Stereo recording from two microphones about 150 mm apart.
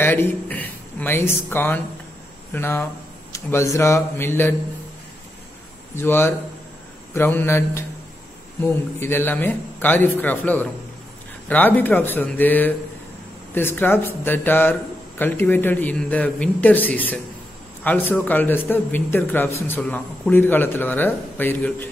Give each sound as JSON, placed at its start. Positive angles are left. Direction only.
{"t": 0.0, "sound": "a man's voice", "side_deg": 15}
{"t": 5.9, "sound": "a man's voice", "side_deg": 15}